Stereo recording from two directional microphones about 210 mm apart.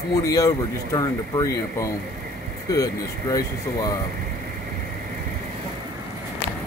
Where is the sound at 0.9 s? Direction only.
15° left (ahead or behind).